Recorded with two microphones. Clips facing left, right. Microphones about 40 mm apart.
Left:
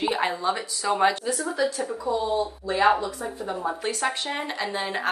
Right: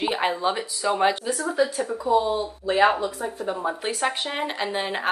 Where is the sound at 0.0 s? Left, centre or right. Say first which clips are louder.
Right 1 dB; centre.